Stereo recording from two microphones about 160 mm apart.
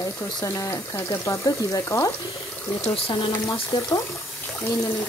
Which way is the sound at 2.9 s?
35° left (ahead or behind).